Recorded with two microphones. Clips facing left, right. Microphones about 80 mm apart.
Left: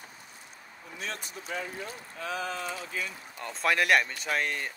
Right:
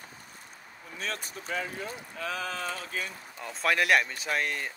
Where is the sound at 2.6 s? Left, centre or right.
Right.